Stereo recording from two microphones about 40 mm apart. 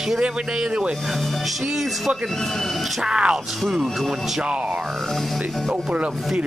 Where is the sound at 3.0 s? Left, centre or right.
Right.